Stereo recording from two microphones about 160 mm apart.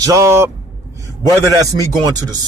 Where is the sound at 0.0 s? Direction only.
20° right (ahead or behind).